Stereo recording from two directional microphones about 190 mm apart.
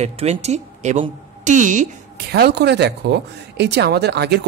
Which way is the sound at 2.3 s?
60° right (ahead or behind).